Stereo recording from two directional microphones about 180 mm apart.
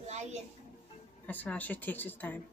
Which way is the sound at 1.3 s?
10° left (ahead or behind).